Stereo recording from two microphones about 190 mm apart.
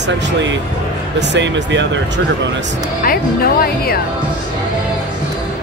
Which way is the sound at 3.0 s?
50° left (ahead or behind).